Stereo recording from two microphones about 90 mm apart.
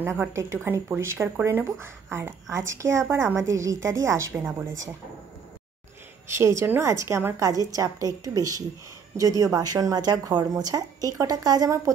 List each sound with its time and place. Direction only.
0.0 s a woman's voice: 25° right (ahead or behind)
6.3 s a woman's voice: 30° right (ahead or behind)